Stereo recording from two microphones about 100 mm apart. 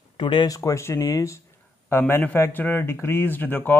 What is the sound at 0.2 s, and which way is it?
Speech, 50° left (ahead or behind).